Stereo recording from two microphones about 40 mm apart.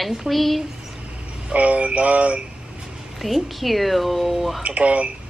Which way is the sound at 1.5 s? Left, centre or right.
Right.